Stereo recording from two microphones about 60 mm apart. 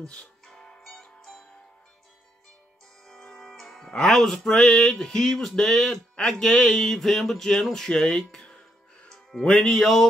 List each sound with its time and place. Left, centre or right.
0.0 s music: centre
3.1 s music: centre
9.1 s speech: centre